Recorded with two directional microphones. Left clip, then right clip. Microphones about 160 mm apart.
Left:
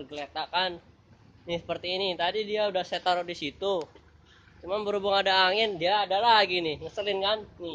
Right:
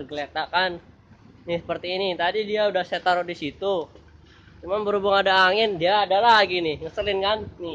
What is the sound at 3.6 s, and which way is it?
Speech, 55° left (ahead or behind).